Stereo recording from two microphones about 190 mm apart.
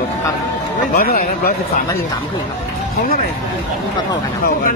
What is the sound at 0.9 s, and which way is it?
Speech, 50° left (ahead or behind).